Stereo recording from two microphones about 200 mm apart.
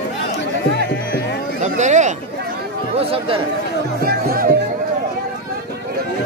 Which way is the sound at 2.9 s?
30° right (ahead or behind).